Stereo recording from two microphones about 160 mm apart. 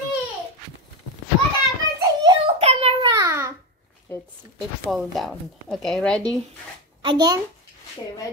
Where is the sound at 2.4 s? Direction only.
40° right (ahead or behind).